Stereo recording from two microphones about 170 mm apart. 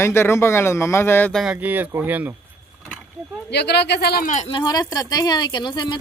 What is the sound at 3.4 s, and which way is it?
Speech, 80° left.